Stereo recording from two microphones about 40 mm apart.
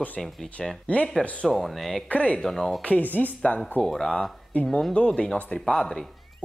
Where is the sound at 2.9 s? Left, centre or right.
Left.